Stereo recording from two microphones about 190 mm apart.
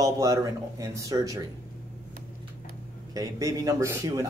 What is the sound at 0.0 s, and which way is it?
Speech, 20° right (ahead or behind).